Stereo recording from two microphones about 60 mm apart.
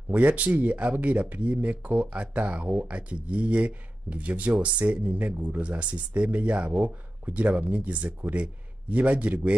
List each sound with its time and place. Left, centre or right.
0.1 s speech: right